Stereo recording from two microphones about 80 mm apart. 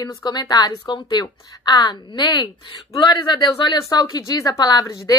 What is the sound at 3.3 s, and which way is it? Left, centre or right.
Speech, left.